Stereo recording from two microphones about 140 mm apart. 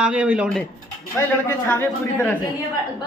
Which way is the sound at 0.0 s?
5° right (ahead or behind).